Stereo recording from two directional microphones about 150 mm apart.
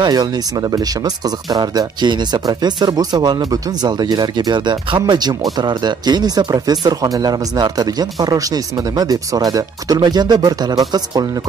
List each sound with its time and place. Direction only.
0.0 s speech: 25° right (ahead or behind)